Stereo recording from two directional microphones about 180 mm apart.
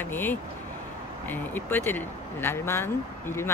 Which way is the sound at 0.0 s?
10° left (ahead or behind).